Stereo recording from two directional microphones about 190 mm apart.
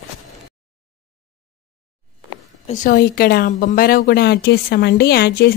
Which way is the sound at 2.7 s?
45° left (ahead or behind).